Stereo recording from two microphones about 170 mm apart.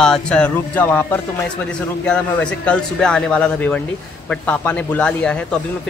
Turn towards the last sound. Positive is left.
turn(degrees=5)  # may be behind; listen again after turning